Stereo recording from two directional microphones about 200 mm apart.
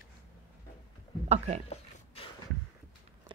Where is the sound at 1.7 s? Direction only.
30° left (ahead or behind).